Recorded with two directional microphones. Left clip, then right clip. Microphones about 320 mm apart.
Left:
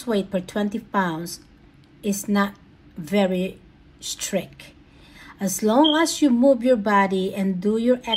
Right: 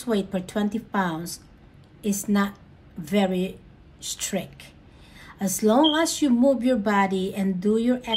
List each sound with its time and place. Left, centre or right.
0.0 s a woman's voice: centre